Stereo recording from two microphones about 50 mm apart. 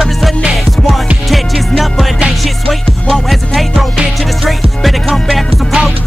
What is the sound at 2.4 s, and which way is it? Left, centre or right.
Music, centre.